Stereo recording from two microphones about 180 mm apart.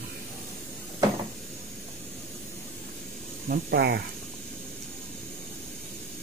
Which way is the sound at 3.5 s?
60° right (ahead or behind).